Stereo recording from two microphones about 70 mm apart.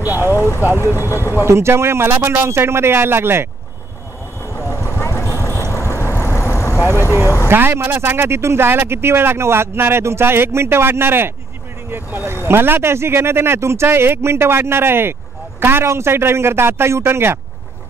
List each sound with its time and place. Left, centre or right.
0.0 s speech: right
0.3 s vehicle: left
0.7 s speech: left
1.3 s speech: right
4.6 s vehicle: left
7.1 s speech: right